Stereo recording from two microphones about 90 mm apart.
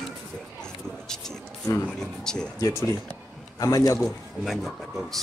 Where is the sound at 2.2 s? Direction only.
5° left (ahead or behind).